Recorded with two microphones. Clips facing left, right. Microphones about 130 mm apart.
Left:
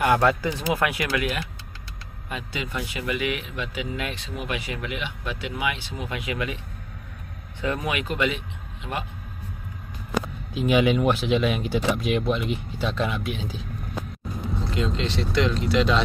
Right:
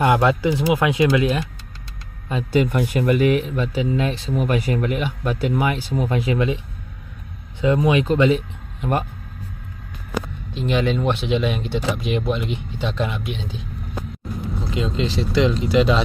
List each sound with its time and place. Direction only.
0.0 s speech: 20° right (ahead or behind)
2.5 s speech: 50° right (ahead or behind); by 6.6 s 30° right (ahead or behind)
7.6 s speech: 20° right (ahead or behind)
10.5 s speech: 5° left (ahead or behind)
14.7 s speech: 5° right (ahead or behind)